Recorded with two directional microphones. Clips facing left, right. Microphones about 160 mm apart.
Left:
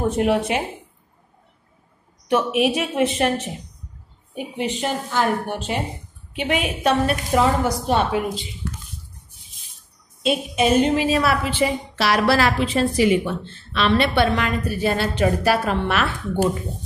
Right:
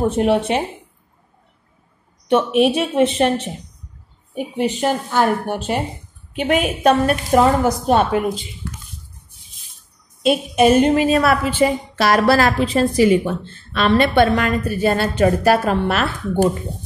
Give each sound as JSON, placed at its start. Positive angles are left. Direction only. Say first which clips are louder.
{"t": 0.2, "sound": "a woman's voice", "louder": "right 3 dB", "side_deg": -30}
{"t": 2.2, "sound": "a woman's voice", "louder": "right 4 dB", "side_deg": -30}
{"t": 4.6, "sound": "a woman's voice", "louder": "right 5 dB", "side_deg": -45}
{"t": 10.2, "sound": "a woman's voice", "louder": "right 5 dB", "side_deg": -50}